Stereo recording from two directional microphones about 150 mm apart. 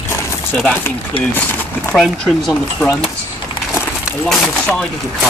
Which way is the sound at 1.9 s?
5° left (ahead or behind).